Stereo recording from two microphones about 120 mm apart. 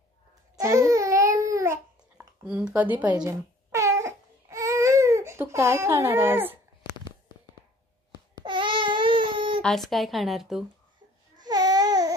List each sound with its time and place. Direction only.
0.6 s babbling: 25° right (ahead or behind)
2.1 s speech: 10° right (ahead or behind)
3.3 s baby cry: 25° right (ahead or behind)
8.5 s a sound: 40° right (ahead or behind)
9.6 s a woman's voice: 5° left (ahead or behind)
11.4 s baby cry: 35° right (ahead or behind)